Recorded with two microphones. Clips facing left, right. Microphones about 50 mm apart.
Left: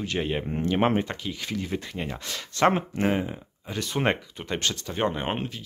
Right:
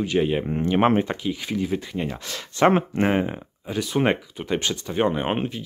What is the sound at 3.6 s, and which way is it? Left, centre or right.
Speech, centre.